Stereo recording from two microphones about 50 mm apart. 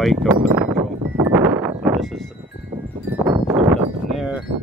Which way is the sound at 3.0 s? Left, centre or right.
Right.